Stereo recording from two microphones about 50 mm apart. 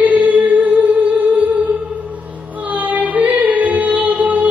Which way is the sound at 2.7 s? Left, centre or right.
Right.